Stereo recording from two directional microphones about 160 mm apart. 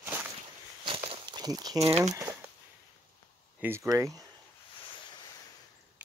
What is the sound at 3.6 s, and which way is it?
Speech, 15° right (ahead or behind).